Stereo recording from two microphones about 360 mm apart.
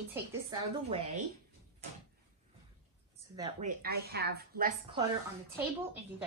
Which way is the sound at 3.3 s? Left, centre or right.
Centre.